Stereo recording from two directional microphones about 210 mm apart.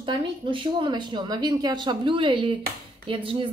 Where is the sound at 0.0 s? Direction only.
25° right (ahead or behind).